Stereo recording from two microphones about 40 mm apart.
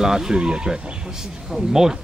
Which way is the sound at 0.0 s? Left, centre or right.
Centre.